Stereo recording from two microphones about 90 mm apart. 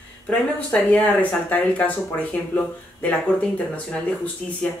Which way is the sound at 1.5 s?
15° left (ahead or behind).